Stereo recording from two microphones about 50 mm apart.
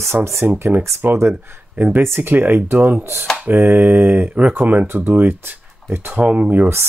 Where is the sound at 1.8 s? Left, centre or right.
Right.